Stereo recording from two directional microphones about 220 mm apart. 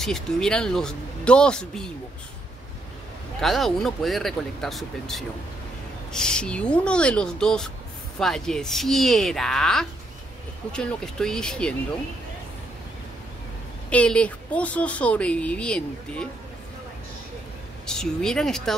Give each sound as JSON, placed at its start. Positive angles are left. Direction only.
{"t": 0.0, "sound": "a woman's voice", "side_deg": 0}
{"t": 3.3, "sound": "a woman's voice", "side_deg": 0}
{"t": 13.8, "sound": "a woman's voice", "side_deg": 5}
{"t": 17.8, "sound": "a woman's voice", "side_deg": 0}